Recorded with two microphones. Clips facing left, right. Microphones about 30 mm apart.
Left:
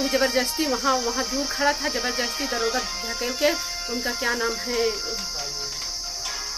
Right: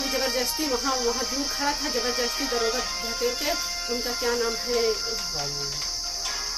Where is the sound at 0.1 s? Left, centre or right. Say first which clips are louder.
Left 4 dB; centre.